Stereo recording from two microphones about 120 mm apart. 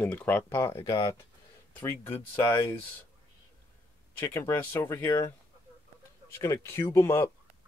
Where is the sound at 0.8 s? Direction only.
30° left (ahead or behind).